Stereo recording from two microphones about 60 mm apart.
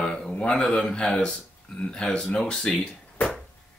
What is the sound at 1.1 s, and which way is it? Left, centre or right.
Speech, centre.